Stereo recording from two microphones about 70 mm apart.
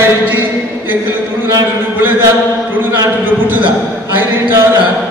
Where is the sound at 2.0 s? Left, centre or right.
Right.